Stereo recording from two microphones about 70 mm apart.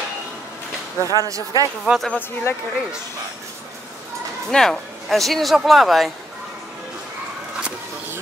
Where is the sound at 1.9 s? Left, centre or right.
Right.